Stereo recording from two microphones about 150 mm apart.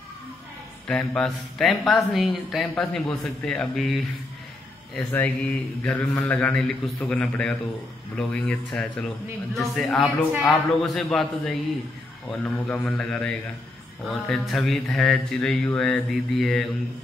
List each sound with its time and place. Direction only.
0.8 s speech: 5° left (ahead or behind)
2.7 s speech: 10° left (ahead or behind)
5.1 s a man's voice: 10° left (ahead or behind)